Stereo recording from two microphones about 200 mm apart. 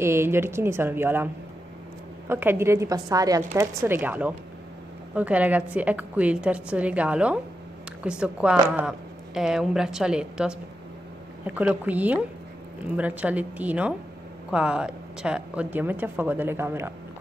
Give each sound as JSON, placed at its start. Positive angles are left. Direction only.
{"t": 0.0, "sound": "a woman's voice", "side_deg": -10}